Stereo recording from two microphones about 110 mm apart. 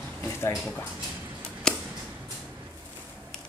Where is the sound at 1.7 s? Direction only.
5° left (ahead or behind).